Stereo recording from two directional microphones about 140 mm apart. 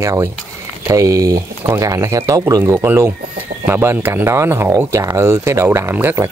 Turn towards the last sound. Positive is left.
turn(degrees=-15)  # may be behind; listen again after turning